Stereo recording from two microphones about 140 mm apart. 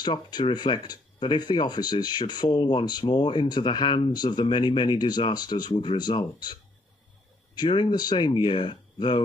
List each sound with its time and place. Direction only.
0.0 s speech: 30° left (ahead or behind)